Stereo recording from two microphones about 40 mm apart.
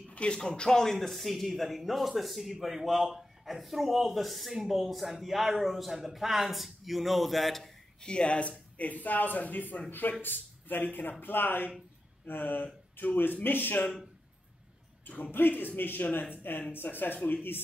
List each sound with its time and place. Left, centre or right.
0.1 s a sound: left
0.4 s speech: centre
0.9 s a man's voice: centre
8.0 s speech: left
15.3 s speech: left